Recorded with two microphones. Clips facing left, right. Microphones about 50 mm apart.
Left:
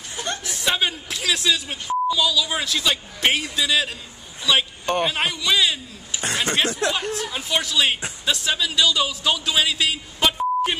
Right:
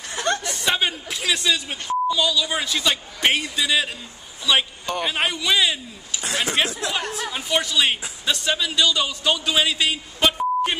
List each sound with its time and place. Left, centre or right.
0.1 s chuckle: right
0.4 s a man's voice: centre
5.0 s a man's voice: centre